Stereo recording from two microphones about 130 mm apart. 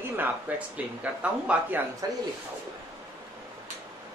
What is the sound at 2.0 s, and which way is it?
Speech, 30° right (ahead or behind).